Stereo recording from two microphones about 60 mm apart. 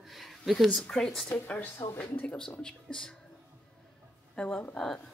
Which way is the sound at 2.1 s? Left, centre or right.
Left.